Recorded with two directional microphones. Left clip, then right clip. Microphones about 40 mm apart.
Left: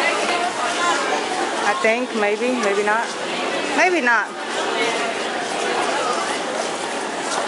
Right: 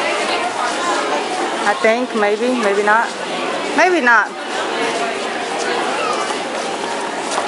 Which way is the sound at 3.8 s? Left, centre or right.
Right.